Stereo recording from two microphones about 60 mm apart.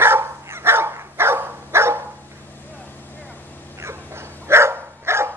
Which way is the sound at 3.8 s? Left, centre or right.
Right.